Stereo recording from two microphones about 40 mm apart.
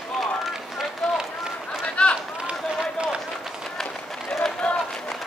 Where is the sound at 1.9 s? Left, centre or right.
Left.